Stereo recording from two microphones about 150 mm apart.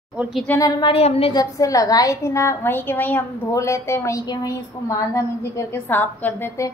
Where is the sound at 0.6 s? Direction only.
30° left (ahead or behind).